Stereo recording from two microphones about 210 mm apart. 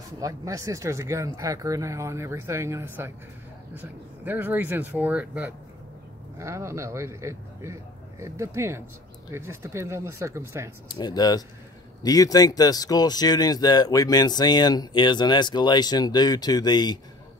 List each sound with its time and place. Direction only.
0.2 s speech: 15° right (ahead or behind)
10.9 s speech: 20° left (ahead or behind)